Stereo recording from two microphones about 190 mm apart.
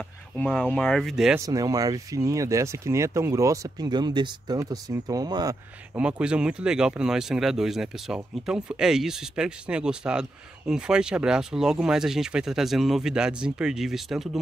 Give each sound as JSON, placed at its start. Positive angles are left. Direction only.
{"t": 0.4, "sound": "speech", "side_deg": 5}
{"t": 1.4, "sound": "speech", "side_deg": -20}
{"t": 5.9, "sound": "speech", "side_deg": -5}